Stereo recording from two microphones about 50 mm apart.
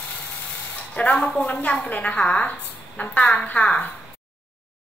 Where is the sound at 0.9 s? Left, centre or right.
Left.